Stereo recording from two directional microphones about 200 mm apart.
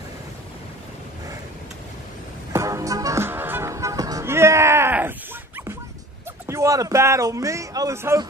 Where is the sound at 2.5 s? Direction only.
15° right (ahead or behind).